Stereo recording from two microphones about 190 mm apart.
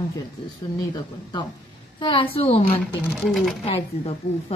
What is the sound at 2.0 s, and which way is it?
Speech, 25° left (ahead or behind).